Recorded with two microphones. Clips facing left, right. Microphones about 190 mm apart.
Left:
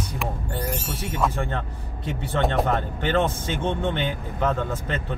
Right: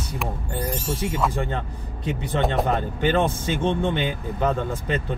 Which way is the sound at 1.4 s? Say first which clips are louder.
Right 1 dB; 15° right (ahead or behind).